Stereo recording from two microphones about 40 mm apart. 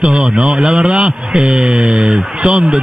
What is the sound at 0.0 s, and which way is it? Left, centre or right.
A man's voice, right.